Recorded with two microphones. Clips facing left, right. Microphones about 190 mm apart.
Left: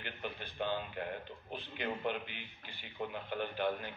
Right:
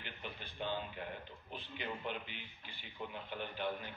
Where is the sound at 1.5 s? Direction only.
55° left (ahead or behind).